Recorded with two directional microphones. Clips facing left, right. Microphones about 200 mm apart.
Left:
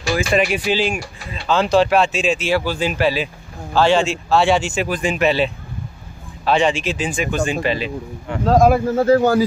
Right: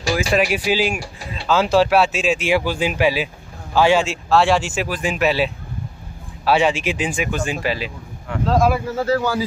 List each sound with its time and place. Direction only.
0.1 s speech: 5° right (ahead or behind)
8.5 s speech: 50° left (ahead or behind)